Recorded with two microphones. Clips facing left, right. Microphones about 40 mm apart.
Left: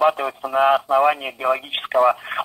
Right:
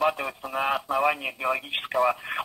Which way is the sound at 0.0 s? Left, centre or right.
Centre.